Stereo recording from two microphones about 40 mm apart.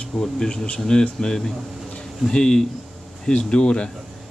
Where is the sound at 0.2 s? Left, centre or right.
Centre.